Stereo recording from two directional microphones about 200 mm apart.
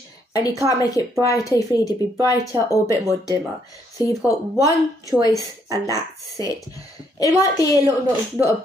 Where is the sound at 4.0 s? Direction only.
15° left (ahead or behind).